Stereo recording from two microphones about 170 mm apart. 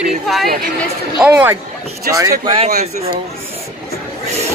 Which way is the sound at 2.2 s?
25° right (ahead or behind).